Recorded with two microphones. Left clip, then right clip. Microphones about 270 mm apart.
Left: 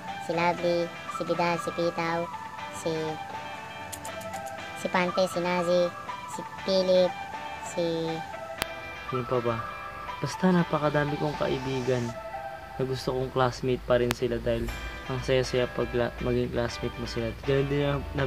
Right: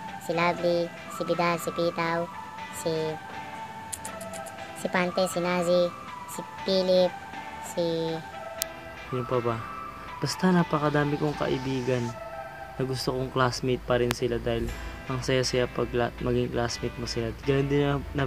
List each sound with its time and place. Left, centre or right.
0.3 s speech: centre
4.8 s speech: centre
10.2 s speech: centre